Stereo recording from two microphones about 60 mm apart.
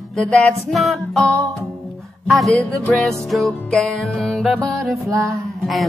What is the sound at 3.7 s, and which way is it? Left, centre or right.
Music, centre.